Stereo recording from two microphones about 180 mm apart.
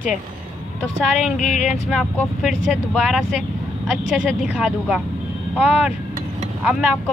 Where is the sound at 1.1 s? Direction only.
Centre (ahead or behind).